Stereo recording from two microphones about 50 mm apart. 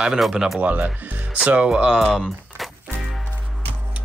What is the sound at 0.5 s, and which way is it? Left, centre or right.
Speech, right.